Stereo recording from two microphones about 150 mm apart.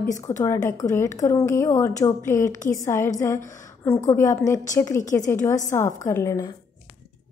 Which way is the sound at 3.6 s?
20° left (ahead or behind).